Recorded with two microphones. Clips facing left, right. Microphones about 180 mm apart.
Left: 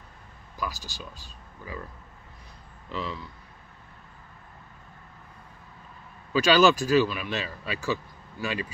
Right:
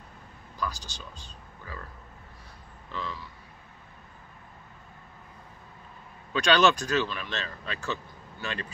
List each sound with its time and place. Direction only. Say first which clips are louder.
0.6 s speech: even; 10° left (ahead or behind)
2.9 s speech: left 3 dB; 15° left (ahead or behind)
6.3 s speech: left 3 dB; 5° left (ahead or behind)